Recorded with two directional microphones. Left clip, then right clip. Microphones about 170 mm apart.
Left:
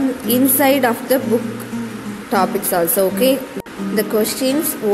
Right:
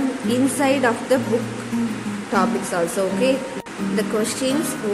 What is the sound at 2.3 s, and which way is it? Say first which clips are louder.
A woman's voice: left 4 dB; 25° left (ahead or behind).